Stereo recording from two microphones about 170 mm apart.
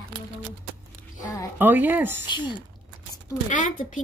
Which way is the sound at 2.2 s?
25° left (ahead or behind).